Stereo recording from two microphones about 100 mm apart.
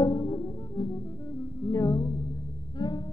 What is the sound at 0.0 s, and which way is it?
Music, 50° left (ahead or behind).